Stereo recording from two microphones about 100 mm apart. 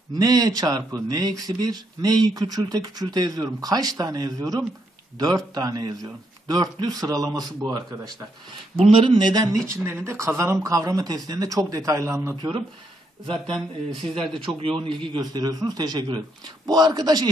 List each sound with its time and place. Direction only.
0.2 s speech: 40° right (ahead or behind)
8.7 s speech: 65° right (ahead or behind)
9.3 s speech: 35° right (ahead or behind)
9.7 s speech: 25° right (ahead or behind)
12.4 s speech: 50° right (ahead or behind)
14.6 s speech: 65° right (ahead or behind)
15.1 s speech: 40° right (ahead or behind)